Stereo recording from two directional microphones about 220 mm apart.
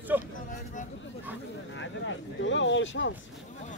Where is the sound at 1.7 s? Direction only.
60° left (ahead or behind).